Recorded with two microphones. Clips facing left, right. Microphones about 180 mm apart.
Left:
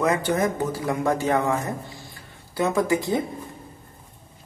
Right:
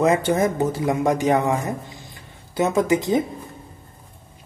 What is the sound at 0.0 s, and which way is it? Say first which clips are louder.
A man's voice: right 4 dB; 25° right (ahead or behind).